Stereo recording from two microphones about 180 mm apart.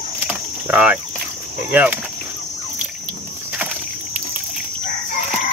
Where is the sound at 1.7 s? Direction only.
10° right (ahead or behind).